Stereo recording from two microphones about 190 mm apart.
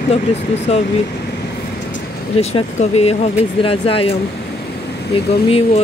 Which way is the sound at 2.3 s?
35° left (ahead or behind).